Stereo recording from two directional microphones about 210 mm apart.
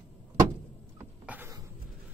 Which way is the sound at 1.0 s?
10° right (ahead or behind).